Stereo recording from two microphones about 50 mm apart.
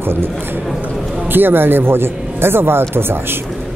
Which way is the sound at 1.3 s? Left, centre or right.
Right.